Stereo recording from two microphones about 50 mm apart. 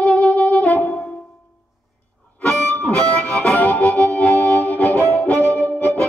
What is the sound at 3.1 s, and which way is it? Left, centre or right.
Harmonica, left.